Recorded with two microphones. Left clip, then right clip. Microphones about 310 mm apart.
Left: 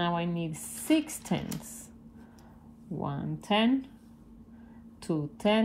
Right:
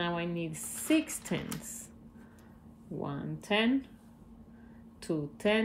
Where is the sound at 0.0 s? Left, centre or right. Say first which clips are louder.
Left 3 dB; centre.